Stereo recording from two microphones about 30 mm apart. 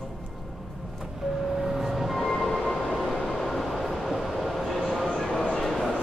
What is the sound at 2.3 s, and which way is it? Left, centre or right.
Train, centre.